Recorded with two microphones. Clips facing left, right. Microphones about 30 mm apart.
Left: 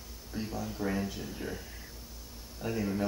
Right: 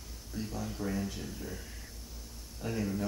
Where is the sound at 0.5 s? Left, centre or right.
Centre.